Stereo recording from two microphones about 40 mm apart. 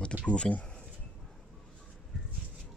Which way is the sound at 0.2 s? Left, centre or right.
Left.